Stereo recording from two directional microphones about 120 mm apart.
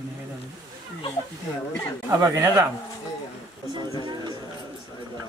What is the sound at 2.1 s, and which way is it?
Speech, 30° right (ahead or behind).